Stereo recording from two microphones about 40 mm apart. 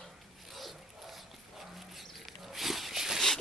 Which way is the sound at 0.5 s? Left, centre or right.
Centre.